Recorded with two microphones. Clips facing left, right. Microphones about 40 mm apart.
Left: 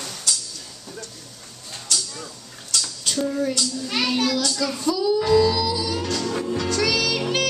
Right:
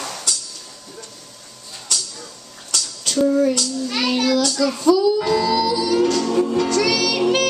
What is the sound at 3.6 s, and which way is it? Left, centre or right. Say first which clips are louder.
A child's voice: right 2 dB; centre.